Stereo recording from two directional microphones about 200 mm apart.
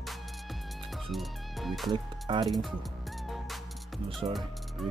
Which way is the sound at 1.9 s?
25° right (ahead or behind).